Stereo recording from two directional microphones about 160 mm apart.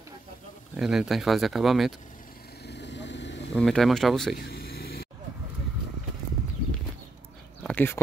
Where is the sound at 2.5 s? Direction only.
90° left.